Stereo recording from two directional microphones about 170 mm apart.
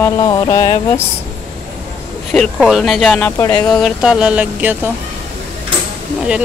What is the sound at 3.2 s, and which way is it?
Speech, 20° left (ahead or behind).